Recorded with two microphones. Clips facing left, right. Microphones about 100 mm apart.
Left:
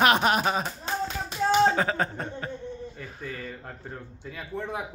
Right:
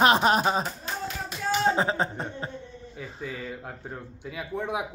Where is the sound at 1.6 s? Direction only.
25° right (ahead or behind).